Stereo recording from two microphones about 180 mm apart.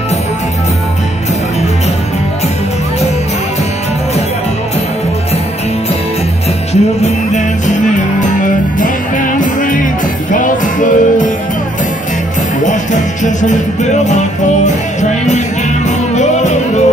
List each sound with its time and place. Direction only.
6.7 s music: 40° left (ahead or behind)
12.6 s music: 45° left (ahead or behind)